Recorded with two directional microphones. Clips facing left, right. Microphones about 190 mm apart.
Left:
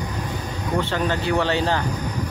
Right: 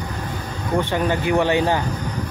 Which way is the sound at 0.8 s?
15° right (ahead or behind).